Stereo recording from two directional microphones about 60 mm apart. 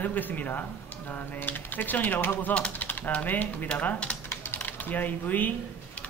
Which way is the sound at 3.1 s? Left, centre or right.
Left.